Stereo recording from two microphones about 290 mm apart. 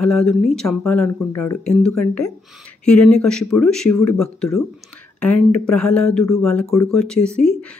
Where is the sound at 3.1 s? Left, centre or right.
Centre.